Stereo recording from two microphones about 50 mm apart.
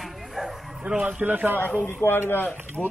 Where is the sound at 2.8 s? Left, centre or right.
Centre.